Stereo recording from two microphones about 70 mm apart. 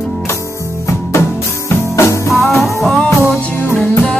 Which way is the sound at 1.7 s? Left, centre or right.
Left.